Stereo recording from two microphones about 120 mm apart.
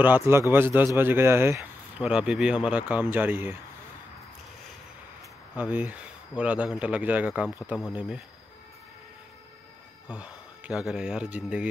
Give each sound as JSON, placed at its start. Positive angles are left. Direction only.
{"t": 0.0, "sound": "a man's voice", "side_deg": -20}
{"t": 2.0, "sound": "speech", "side_deg": -10}
{"t": 5.6, "sound": "speech", "side_deg": -15}
{"t": 10.0, "sound": "speech", "side_deg": -10}